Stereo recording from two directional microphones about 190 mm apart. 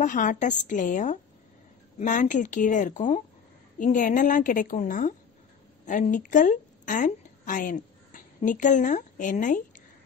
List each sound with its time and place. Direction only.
0.0 s a woman's voice: 45° left (ahead or behind)